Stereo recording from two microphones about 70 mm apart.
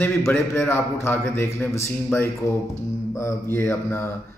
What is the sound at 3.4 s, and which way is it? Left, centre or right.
Speech, left.